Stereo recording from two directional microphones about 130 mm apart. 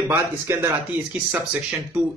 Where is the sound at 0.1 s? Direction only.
20° right (ahead or behind).